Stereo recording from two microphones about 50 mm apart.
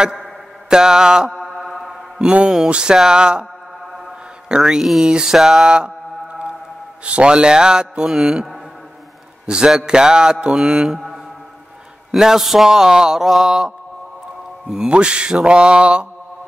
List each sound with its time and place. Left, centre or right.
0.0 s mantra: centre
1.3 s mantra: centre
2.5 s speech: centre
4.5 s speech: centre
7.1 s speech: right
9.5 s speech: centre
12.1 s speech: centre
14.7 s mantra: centre